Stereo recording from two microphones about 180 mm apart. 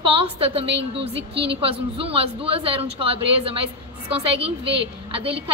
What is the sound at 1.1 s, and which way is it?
Speech, 70° right (ahead or behind).